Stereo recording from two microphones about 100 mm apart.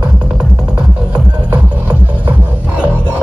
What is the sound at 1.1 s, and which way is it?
Music, 15° right (ahead or behind).